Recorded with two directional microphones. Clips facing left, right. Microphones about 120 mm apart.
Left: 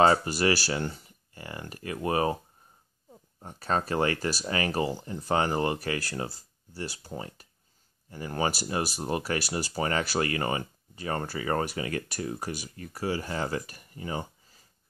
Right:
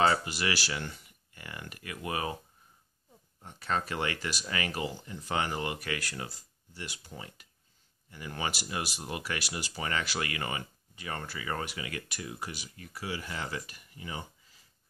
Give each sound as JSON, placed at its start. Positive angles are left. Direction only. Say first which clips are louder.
{"t": 0.0, "sound": "speech", "louder": "left 6 dB", "side_deg": 35}